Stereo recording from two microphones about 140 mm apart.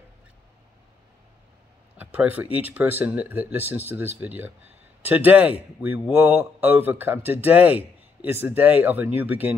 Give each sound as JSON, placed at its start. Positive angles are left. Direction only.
{"t": 2.1, "sound": "speech", "side_deg": -10}